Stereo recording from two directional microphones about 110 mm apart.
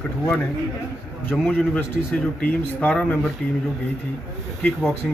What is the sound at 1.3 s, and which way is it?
Speech, 10° left (ahead or behind).